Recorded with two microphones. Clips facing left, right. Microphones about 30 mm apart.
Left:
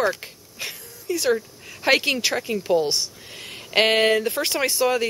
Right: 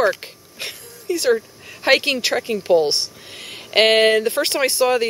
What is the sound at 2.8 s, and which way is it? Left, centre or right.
Speech, right.